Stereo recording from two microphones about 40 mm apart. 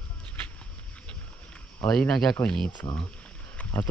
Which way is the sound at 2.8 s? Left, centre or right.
Left.